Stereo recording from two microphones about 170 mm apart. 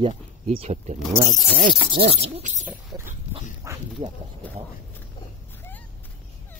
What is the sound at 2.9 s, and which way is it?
Pig, 25° right (ahead or behind).